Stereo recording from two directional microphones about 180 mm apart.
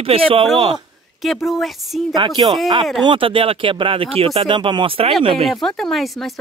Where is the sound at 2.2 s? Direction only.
25° right (ahead or behind).